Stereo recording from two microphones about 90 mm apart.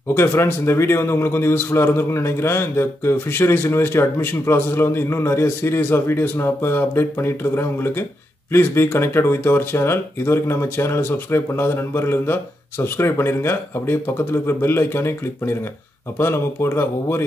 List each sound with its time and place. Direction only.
0.1 s a man's voice: 30° left (ahead or behind)